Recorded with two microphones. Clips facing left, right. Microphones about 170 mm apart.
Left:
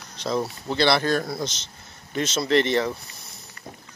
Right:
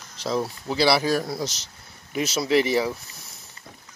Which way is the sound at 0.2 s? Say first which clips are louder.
Even; 5° right (ahead or behind).